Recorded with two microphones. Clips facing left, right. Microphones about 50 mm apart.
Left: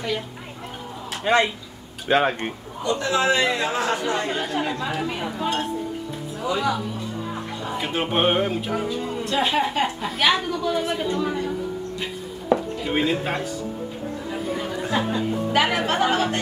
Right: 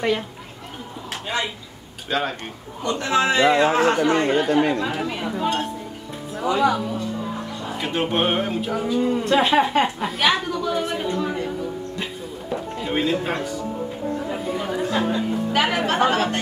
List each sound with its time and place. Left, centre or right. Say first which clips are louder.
1.2 s speech: left 7 dB; left
2.0 s speech: left 5 dB; left
2.8 s a man's voice: right 1 dB; right
4.4 s speech: right 7 dB; right
5.0 s speech: right 2 dB; centre
6.4 s speech: right 4 dB; right
7.6 s speech: right 1 dB; centre
9.2 s a man's voice: right 2 dB; right
10.0 s speech: even; centre
12.5 s music: even; centre
13.2 s speech: right 1 dB; centre
14.3 s music: right 1 dB; centre
14.8 s music: right 1 dB; centre
15.1 s speech: even; centre